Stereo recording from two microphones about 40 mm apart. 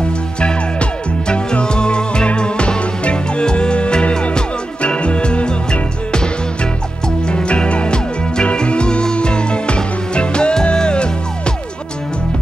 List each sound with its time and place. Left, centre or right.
0.4 s music: left
7.2 s music: left